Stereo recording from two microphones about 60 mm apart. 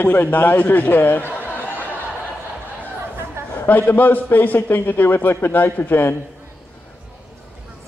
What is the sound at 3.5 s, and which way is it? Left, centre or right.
A man's voice, left.